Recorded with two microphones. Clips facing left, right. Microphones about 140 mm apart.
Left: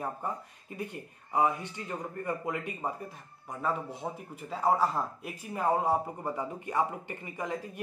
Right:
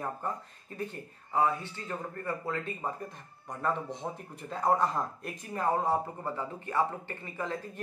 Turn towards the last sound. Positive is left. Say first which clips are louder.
# even
turn(degrees=15)  # may be behind; listen again after turning